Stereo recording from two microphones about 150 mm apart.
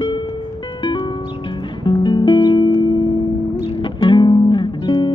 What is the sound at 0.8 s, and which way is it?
Music, 30° left (ahead or behind).